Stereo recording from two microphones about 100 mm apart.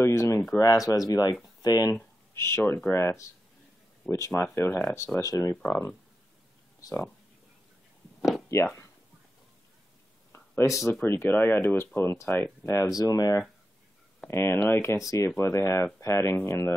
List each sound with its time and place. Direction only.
0.0 s a sound: 30° left (ahead or behind)
0.6 s speech: 35° left (ahead or behind)
2.4 s speech: 25° left (ahead or behind)
8.5 s speech: 30° left (ahead or behind)
10.3 s a sound: 25° left (ahead or behind)
10.9 s speech: 25° left (ahead or behind)
14.2 s speech: 20° left (ahead or behind)